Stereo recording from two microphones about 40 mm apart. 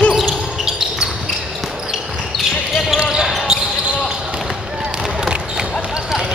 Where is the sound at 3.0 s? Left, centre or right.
Centre.